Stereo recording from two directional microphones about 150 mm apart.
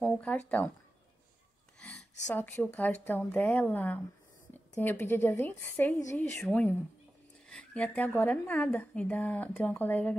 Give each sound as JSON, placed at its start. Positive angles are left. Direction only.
{"t": 0.0, "sound": "speech", "side_deg": 10}
{"t": 1.8, "sound": "a sound", "side_deg": 5}
{"t": 2.2, "sound": "speech", "side_deg": 10}